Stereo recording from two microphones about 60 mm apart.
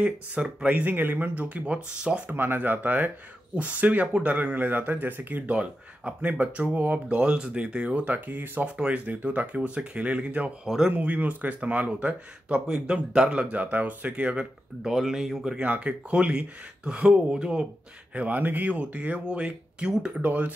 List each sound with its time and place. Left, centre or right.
0.0 s speech: centre; by 1.4 s right
1.4 s speech: centre
2.2 s speech: right
5.5 s speech: centre
15.0 s speech: centre
15.6 s speech: right
18.1 s speech: right